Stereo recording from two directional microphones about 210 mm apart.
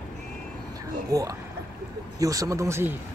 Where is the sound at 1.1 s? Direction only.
15° right (ahead or behind).